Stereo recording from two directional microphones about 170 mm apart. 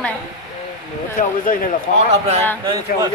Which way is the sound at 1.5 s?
50° left (ahead or behind).